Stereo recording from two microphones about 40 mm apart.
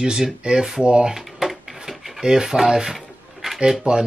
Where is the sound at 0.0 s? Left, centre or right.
Centre.